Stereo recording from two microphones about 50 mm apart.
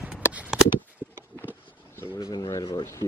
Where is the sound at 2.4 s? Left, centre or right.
Left.